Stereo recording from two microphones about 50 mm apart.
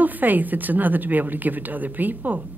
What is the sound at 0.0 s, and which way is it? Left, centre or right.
A woman's voice, right.